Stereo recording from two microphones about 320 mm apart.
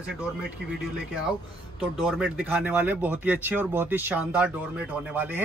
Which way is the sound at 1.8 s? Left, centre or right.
Centre.